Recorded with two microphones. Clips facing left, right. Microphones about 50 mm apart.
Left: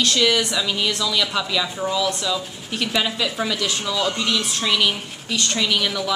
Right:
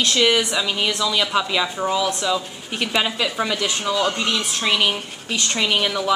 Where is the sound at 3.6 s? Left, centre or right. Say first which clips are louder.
Right 2 dB; right.